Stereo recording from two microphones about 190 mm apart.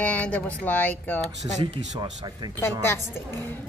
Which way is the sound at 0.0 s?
5° left (ahead or behind).